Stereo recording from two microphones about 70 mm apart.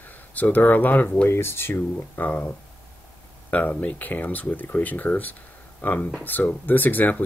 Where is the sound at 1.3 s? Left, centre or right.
Left.